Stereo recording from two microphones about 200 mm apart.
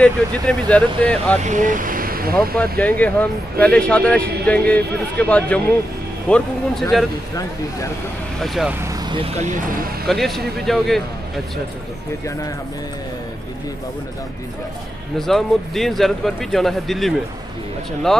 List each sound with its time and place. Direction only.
0.0 s a man's voice: 5° left (ahead or behind)
1.4 s speech: 40° right (ahead or behind)
2.8 s a man's voice: 5° left (ahead or behind)
8.4 s speech: centre (ahead or behind)
8.8 s vehicle: 20° right (ahead or behind)
9.4 s speech: 40° right (ahead or behind)
10.0 s speech: centre (ahead or behind)
15.1 s speech: centre (ahead or behind)